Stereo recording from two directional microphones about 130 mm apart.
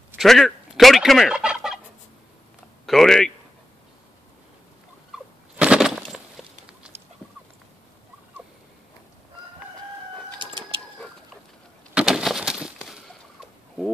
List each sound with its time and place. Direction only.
0.2 s fowl: centre (ahead or behind)
2.9 s speech: centre (ahead or behind)
5.1 s rodents: 5° right (ahead or behind)
10.4 s bird: 40° right (ahead or behind)
11.9 s fowl: 5° right (ahead or behind)